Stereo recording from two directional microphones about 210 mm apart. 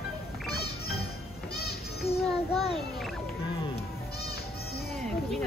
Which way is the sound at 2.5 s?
30° left (ahead or behind).